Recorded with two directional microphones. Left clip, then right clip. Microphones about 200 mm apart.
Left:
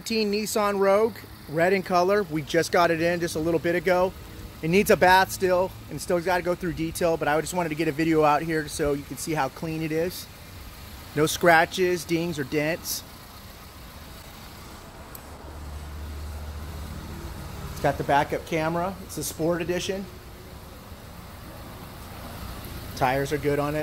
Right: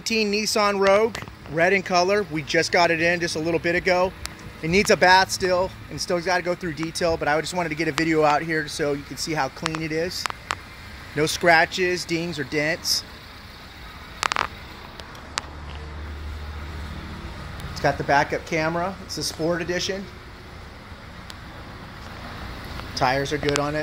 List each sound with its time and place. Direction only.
0.0 s speech: 5° left (ahead or behind)
11.1 s speech: 20° left (ahead or behind)
17.8 s speech: 5° right (ahead or behind)
22.9 s speech: 5° left (ahead or behind)